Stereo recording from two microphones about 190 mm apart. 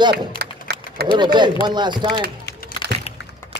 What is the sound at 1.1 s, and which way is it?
A man's voice, 25° right (ahead or behind).